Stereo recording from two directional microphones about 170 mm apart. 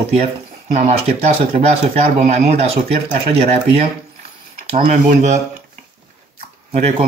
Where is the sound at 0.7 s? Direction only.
45° right (ahead or behind).